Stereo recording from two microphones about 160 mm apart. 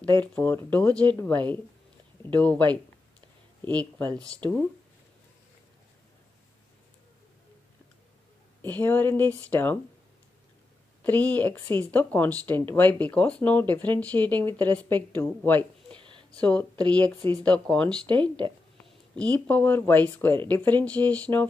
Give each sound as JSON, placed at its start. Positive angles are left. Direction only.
{"t": 0.0, "sound": "speech", "side_deg": 10}
{"t": 4.2, "sound": "speech", "side_deg": -20}
{"t": 8.6, "sound": "speech", "side_deg": 10}
{"t": 11.1, "sound": "speech", "side_deg": 10}
{"t": 16.0, "sound": "a sound", "side_deg": -30}
{"t": 16.3, "sound": "speech", "side_deg": 5}
{"t": 19.3, "sound": "speech", "side_deg": 10}